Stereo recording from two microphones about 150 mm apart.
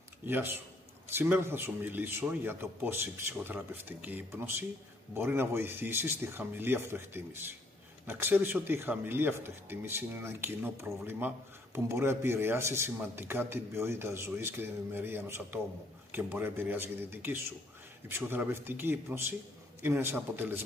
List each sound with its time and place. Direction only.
0.3 s speech: 15° right (ahead or behind)